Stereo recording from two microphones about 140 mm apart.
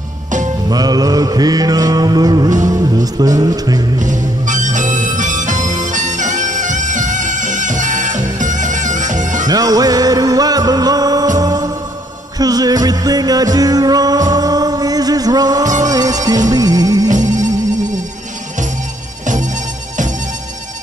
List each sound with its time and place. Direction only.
0.7 s mantra: 30° right (ahead or behind)
2.7 s music: 25° right (ahead or behind)
4.0 s harmonica: 65° right (ahead or behind)
5.9 s bagpipes: 65° right (ahead or behind)
9.5 s music: 25° right (ahead or behind)
15.6 s music: 60° right (ahead or behind)
15.9 s music: 25° right (ahead or behind)
19.2 s music: 65° right (ahead or behind)